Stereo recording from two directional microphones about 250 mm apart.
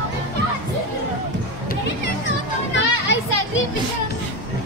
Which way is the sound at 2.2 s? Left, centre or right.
Left.